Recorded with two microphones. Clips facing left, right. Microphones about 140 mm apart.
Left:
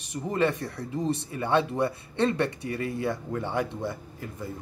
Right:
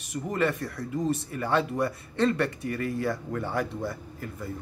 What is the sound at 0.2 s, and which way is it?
Speech, 25° left (ahead or behind).